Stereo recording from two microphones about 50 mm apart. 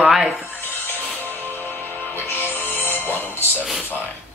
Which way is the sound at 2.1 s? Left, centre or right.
Left.